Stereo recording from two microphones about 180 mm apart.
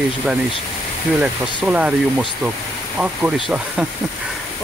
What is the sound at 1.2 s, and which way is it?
Speech, 5° right (ahead or behind).